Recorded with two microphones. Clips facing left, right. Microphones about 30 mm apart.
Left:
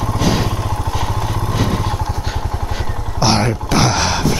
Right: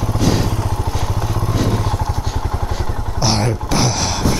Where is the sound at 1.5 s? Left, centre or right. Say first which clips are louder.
Even; centre.